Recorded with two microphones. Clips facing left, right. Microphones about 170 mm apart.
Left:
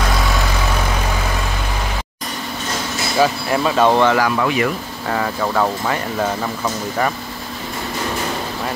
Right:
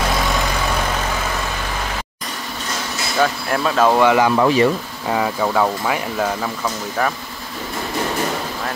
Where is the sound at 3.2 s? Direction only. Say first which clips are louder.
Left 2 dB; 5° left (ahead or behind).